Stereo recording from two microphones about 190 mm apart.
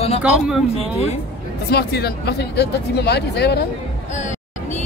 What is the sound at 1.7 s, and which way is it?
Speech, 55° left (ahead or behind).